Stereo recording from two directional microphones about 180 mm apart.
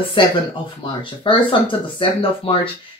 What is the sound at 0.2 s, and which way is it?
Speech, 25° left (ahead or behind).